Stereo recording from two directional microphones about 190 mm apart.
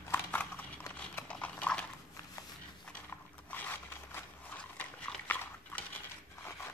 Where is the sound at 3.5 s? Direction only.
10° left (ahead or behind).